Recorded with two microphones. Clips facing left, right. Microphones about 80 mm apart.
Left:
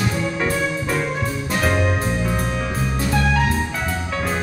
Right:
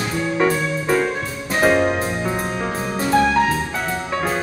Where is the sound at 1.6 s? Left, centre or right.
Right.